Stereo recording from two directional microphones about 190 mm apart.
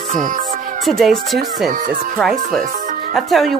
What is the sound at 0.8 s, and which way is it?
A woman's voice, centre (ahead or behind).